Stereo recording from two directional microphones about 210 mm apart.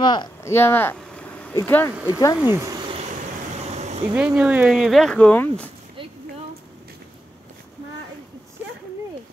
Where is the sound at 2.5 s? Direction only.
15° right (ahead or behind); by 4.1 s 30° right (ahead or behind).